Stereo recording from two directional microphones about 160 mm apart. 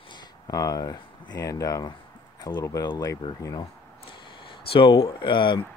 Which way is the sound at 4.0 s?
35° left (ahead or behind).